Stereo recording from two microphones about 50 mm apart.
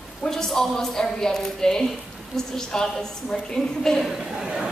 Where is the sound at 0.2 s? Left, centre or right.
Centre.